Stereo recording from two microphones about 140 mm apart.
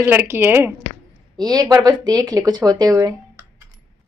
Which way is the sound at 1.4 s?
25° right (ahead or behind).